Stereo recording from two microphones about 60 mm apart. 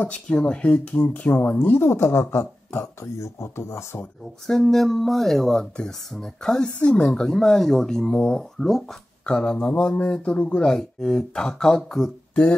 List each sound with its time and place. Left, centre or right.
0.0 s speech: left
1.8 s a woman's voice: left
3.2 s a woman's voice: left
4.5 s speech: centre